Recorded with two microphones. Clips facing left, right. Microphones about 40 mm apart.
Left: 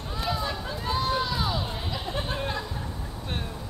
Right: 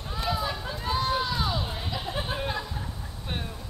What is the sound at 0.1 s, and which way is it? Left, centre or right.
Run, centre.